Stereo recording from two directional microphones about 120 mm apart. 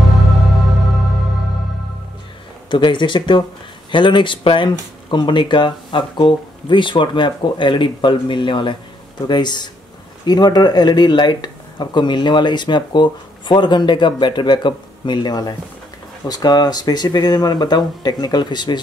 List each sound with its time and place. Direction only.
2.7 s speech: 40° left (ahead or behind)